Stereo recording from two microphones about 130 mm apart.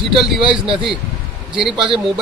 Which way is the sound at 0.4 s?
40° right (ahead or behind).